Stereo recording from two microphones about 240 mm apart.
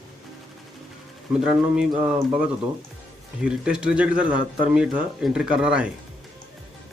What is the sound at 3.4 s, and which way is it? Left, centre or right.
Speech, centre.